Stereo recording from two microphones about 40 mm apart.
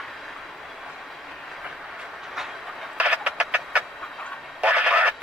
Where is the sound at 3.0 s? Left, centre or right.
Right.